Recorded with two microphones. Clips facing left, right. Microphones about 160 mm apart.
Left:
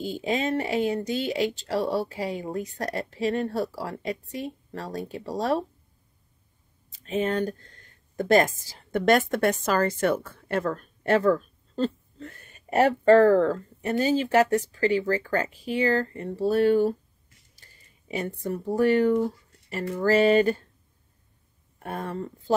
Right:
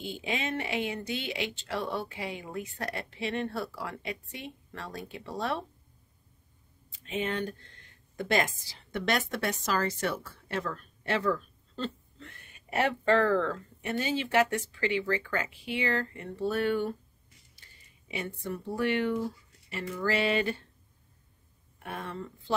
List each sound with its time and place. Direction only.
0.0 s speech: 40° left (ahead or behind)
6.9 s speech: 40° left (ahead or behind)
21.7 s speech: 40° left (ahead or behind)